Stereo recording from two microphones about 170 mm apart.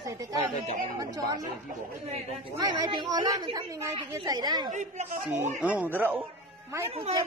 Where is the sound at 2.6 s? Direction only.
20° right (ahead or behind).